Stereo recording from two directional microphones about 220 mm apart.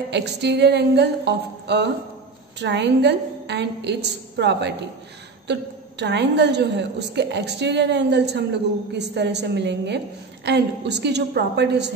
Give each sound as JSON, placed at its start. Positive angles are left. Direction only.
{"t": 0.1, "sound": "a woman's voice", "side_deg": -50}